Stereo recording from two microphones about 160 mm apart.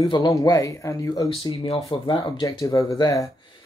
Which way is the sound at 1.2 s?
35° left (ahead or behind).